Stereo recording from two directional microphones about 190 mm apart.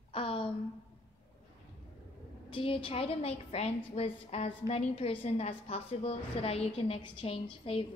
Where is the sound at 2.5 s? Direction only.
25° left (ahead or behind).